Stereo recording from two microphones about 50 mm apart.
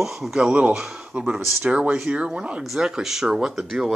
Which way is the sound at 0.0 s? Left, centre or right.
Centre.